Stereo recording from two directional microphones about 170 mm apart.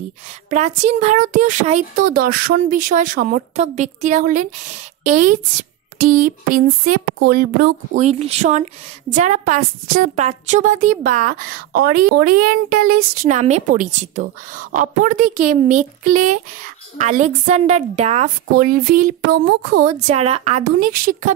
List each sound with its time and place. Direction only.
0.5 s speech: 45° right (ahead or behind); by 8.0 s 60° right (ahead or behind)
8.0 s speech: 40° right (ahead or behind)
18.6 s speech: 55° right (ahead or behind); by 20.6 s 40° right (ahead or behind)
20.6 s speech: 60° right (ahead or behind)